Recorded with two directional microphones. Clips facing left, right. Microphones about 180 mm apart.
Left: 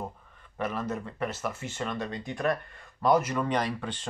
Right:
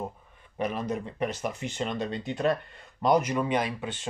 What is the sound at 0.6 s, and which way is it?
Speech, 15° right (ahead or behind).